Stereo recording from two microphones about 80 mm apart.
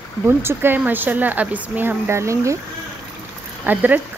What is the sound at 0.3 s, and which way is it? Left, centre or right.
Speech, right.